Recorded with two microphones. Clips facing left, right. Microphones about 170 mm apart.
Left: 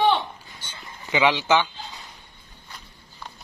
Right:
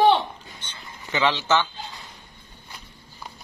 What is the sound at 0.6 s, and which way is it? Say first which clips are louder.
Speech: even; 10° left (ahead or behind).